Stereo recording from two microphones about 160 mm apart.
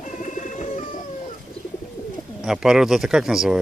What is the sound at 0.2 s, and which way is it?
Bird, 50° left (ahead or behind).